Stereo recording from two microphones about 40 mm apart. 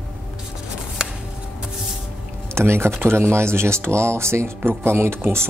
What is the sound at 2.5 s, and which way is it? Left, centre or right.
Speech, right.